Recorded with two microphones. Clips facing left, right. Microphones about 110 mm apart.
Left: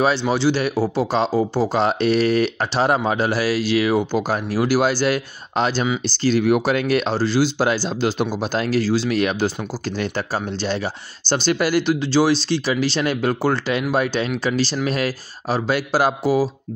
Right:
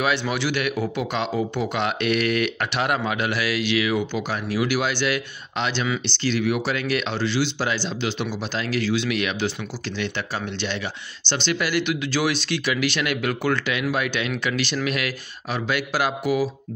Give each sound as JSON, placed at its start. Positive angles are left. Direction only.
{"t": 0.0, "sound": "a man's voice", "side_deg": 30}